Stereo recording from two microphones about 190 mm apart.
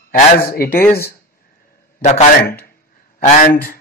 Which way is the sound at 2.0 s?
35° left (ahead or behind).